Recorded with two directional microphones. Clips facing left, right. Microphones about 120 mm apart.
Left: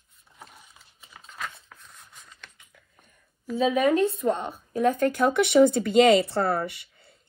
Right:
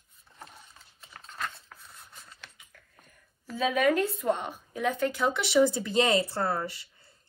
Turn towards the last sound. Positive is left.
turn(degrees=65)  # may be behind; listen again after turning